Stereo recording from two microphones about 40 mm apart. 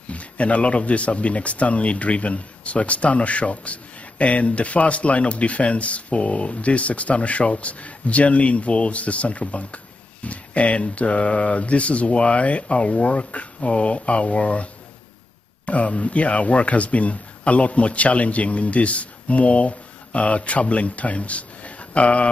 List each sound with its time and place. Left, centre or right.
0.1 s speech: left